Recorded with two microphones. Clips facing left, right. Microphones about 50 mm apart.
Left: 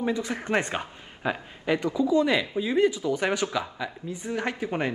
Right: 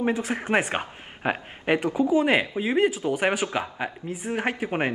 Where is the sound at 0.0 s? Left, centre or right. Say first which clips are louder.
Right 2 dB; right.